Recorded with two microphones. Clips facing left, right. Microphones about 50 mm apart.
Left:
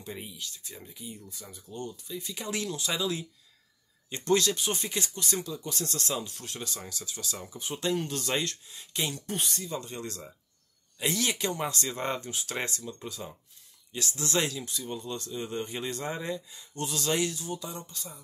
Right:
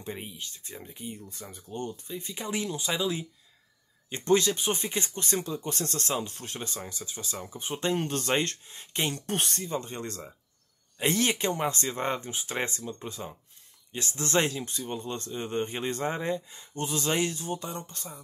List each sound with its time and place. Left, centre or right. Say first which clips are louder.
0.0 s speech: right 2 dB; right
9.6 s speech: right 3 dB; right